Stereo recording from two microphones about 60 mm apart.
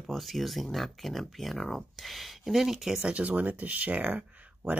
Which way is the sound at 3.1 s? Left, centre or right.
Right.